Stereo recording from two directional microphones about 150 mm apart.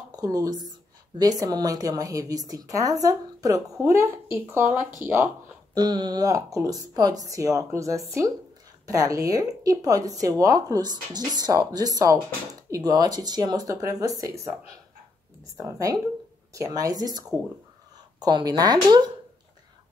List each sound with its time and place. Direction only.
0.1 s a sound: 25° right (ahead or behind)
1.4 s speech: 25° right (ahead or behind)
5.8 s speech: 30° right (ahead or behind)
15.5 s speech: 20° right (ahead or behind)